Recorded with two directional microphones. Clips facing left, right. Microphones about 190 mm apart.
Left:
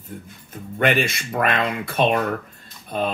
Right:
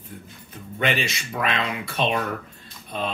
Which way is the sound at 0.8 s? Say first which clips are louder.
Left 5 dB; 50° left (ahead or behind).